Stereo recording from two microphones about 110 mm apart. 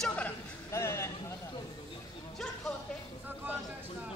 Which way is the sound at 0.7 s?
25° left (ahead or behind).